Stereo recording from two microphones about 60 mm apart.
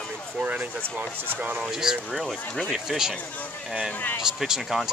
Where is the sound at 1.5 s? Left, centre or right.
Centre.